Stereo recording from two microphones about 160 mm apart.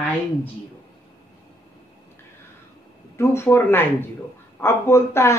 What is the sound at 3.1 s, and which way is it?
Speech, 15° left (ahead or behind).